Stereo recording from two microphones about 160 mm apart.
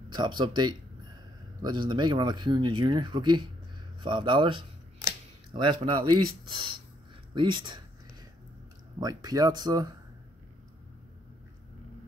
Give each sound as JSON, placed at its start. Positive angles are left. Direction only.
{"t": 0.1, "sound": "speech", "side_deg": -30}
{"t": 9.0, "sound": "speech", "side_deg": -25}